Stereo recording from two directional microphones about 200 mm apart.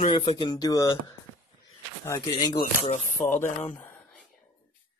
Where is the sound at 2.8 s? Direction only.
35° left (ahead or behind).